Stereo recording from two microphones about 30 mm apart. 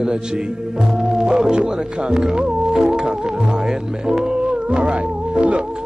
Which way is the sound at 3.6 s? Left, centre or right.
Centre.